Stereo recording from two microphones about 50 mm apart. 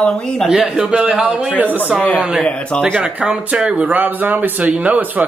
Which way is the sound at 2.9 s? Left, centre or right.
Centre.